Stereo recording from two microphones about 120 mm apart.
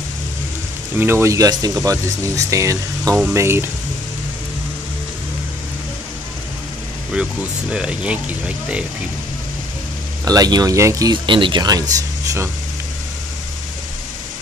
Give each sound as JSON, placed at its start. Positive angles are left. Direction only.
{"t": 0.9, "sound": "speech", "side_deg": -20}
{"t": 7.7, "sound": "speech", "side_deg": -5}
{"t": 10.2, "sound": "speech", "side_deg": -30}
{"t": 11.2, "sound": "speech", "side_deg": -45}